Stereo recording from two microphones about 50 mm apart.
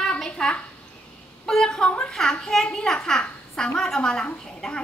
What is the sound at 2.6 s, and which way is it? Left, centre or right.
A child's voice, centre.